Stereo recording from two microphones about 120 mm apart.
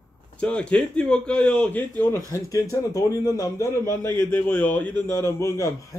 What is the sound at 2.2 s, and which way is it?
A man's voice, 25° left (ahead or behind).